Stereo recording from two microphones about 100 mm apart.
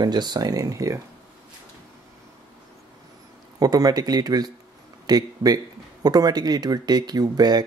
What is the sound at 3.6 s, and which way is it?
Speech, 40° right (ahead or behind).